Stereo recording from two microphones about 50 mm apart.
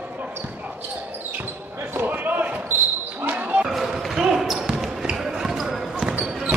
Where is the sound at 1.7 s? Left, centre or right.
Right.